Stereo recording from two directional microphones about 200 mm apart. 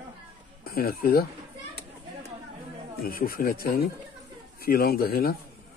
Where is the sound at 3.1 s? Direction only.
45° left (ahead or behind).